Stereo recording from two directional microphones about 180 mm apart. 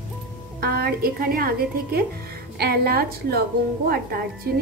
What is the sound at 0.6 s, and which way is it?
A woman's voice, 55° right (ahead or behind).